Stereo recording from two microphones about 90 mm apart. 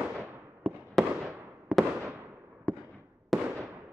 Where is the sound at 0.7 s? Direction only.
15° left (ahead or behind).